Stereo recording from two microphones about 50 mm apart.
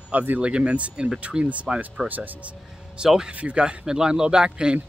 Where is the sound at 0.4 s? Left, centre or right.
Right.